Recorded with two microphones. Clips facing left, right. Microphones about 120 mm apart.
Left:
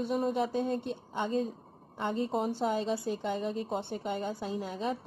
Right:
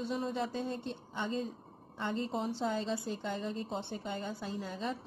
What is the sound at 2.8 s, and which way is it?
Speech, 15° left (ahead or behind).